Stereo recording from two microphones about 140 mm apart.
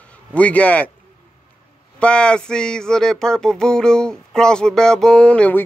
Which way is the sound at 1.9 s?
5° left (ahead or behind).